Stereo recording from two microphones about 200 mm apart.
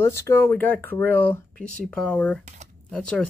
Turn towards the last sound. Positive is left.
turn(degrees=5)  # may be behind; listen again after turning